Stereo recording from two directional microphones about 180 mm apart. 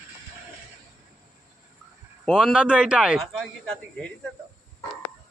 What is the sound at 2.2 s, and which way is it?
A man's voice, centre (ahead or behind).